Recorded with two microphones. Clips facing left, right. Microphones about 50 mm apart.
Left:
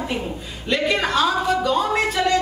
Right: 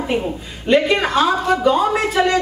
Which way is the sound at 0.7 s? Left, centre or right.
Centre.